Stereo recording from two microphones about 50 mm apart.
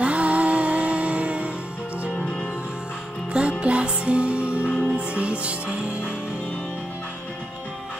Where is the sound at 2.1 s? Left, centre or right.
Centre.